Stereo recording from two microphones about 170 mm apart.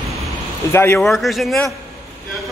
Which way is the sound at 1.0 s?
Centre (ahead or behind).